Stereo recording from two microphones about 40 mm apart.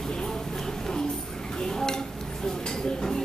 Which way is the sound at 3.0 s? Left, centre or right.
Centre.